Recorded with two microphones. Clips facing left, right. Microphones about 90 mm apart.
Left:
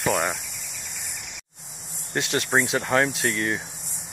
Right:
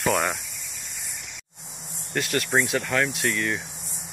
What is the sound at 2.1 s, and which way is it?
Speech, 25° left (ahead or behind).